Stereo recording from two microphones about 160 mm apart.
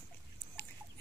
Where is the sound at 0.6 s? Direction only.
10° left (ahead or behind).